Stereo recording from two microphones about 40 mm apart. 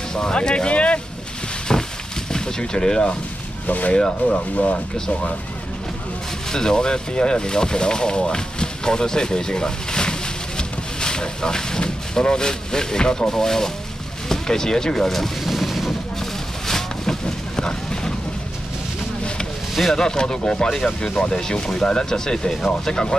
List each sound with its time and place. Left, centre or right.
0.1 s vehicle: centre
1.7 s a sound: centre
2.3 s speech: left
3.6 s speech: left
3.9 s speech: left
4.6 s speech: left
6.5 s speech: centre
15.4 s a sound: centre
16.2 s a sound: centre
19.7 s speech: centre
20.0 s speech: centre